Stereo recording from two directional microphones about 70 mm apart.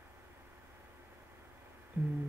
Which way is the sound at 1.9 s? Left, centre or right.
Right.